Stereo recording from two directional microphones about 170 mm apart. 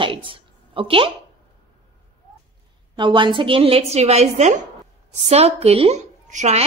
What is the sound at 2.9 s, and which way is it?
A woman's voice, 25° right (ahead or behind).